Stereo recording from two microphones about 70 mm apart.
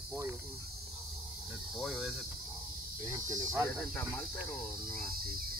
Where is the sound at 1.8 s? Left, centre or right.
Centre.